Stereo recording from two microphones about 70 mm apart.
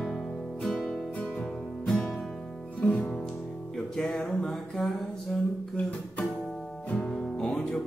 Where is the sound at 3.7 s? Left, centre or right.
Centre.